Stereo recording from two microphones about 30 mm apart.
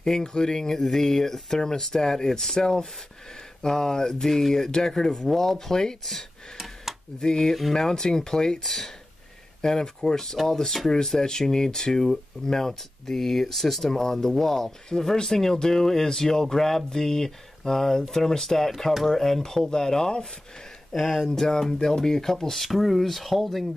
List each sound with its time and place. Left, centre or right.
0.0 s speech: centre
4.6 s speech: left
7.2 s speech: left
10.9 s speech: left
20.9 s speech: centre
21.4 s speech: centre